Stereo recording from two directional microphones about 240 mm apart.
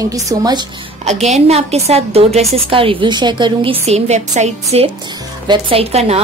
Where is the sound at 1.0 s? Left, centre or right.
Right.